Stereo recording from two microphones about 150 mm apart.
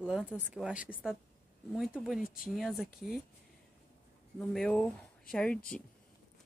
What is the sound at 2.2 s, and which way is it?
Speech, 70° left (ahead or behind).